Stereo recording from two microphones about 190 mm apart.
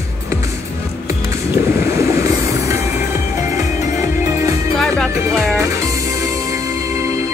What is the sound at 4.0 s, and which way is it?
Music, 15° right (ahead or behind).